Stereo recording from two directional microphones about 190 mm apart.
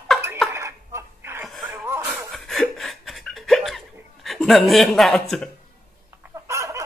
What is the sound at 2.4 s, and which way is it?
Laughter, centre (ahead or behind).